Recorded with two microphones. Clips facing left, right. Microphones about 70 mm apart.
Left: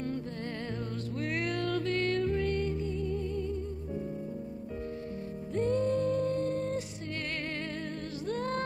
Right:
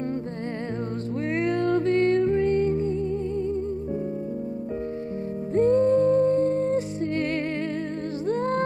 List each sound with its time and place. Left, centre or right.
1.3 s music: right
5.6 s music: right
8.3 s music: right